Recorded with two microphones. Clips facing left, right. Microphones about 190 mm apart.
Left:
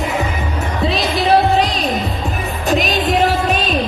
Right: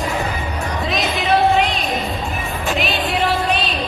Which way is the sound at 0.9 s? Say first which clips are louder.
Left 4 dB; 35° left (ahead or behind).